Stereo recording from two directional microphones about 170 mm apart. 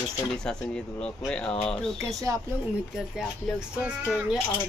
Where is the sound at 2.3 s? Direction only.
20° right (ahead or behind).